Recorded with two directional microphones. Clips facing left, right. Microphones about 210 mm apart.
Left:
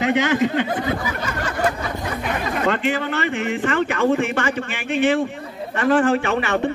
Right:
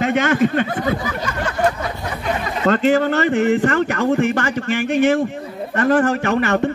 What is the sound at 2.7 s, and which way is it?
A man's voice, 45° right (ahead or behind).